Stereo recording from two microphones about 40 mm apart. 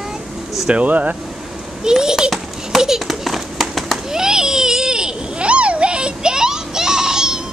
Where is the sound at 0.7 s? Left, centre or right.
Right.